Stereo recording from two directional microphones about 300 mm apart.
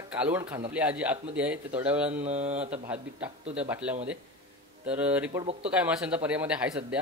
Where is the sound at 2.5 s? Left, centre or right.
Centre.